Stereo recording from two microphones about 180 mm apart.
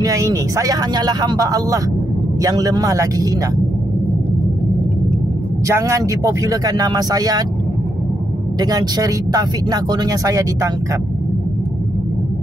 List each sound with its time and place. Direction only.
0.0 s speech: 20° right (ahead or behind)
5.7 s speech: 15° right (ahead or behind)
8.5 s speech: 20° right (ahead or behind)